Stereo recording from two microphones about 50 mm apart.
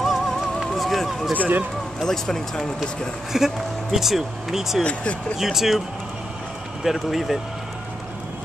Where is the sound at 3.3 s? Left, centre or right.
Centre.